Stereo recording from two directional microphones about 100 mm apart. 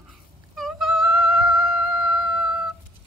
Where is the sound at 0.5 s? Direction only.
5° right (ahead or behind).